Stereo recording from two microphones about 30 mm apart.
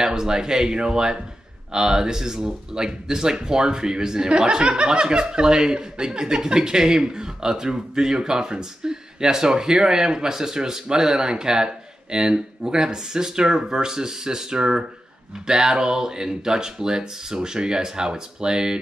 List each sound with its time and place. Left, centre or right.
0.0 s speech: right